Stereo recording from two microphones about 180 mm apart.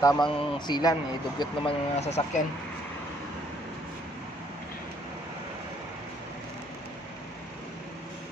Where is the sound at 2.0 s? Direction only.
35° left (ahead or behind).